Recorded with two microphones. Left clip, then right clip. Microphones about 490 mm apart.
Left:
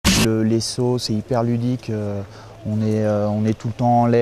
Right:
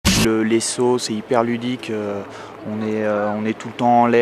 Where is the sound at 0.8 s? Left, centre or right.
Left.